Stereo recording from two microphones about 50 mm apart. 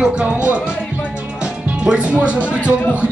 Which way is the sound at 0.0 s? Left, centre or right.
Right.